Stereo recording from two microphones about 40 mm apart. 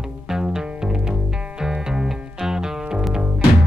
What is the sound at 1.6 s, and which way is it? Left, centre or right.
Music, centre.